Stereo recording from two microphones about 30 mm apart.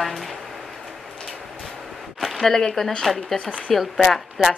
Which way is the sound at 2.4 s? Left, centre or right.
Centre.